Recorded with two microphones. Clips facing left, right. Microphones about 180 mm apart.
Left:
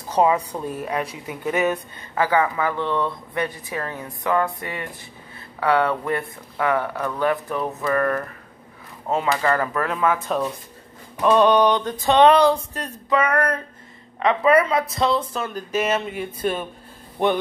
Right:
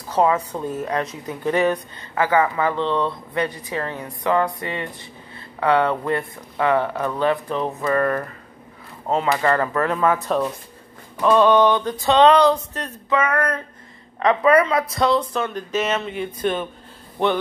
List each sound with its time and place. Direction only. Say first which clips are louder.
0.1 s a woman's voice: even; 15° left (ahead or behind)
2.2 s speech: right 2 dB; 10° right (ahead or behind)
3.7 s a woman's voice: right 2 dB; 10° left (ahead or behind)
4.0 s speech: right 1 dB; 15° right (ahead or behind)
7.8 s speech: right 1 dB; centre (ahead or behind)
9.3 s speech: right 2 dB; centre (ahead or behind)
11.1 s a woman's voice: right 1 dB; 15° left (ahead or behind)
13.1 s a sound: even; 35° left (ahead or behind)
14.4 s speech: even; 25° left (ahead or behind)
15.5 s a woman's voice: left 4 dB; 10° left (ahead or behind)